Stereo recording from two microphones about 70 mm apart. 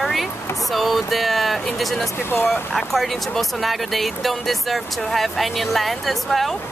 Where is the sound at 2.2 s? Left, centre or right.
Left.